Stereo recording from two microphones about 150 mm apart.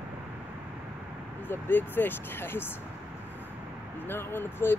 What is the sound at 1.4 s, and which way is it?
Speech, 15° left (ahead or behind).